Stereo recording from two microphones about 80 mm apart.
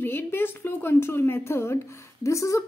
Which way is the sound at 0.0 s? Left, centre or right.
Left.